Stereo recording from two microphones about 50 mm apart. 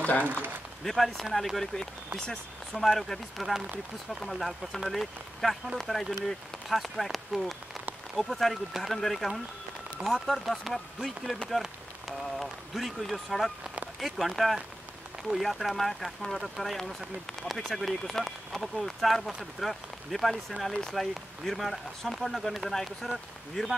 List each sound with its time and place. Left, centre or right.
0.2 s a man's voice: right
0.8 s speech: centre